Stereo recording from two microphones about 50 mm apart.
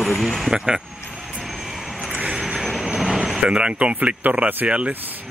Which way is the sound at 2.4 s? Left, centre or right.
Centre.